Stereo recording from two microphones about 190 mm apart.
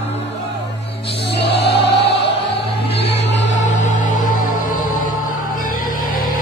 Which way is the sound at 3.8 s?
40° left (ahead or behind).